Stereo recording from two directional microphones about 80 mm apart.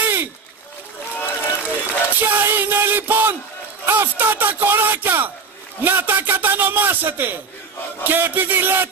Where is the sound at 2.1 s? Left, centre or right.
Right.